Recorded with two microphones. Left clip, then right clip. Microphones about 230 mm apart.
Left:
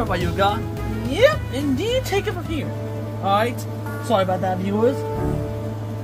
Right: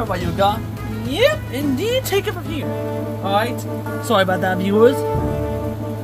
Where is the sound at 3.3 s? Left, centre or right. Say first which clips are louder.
Even; centre.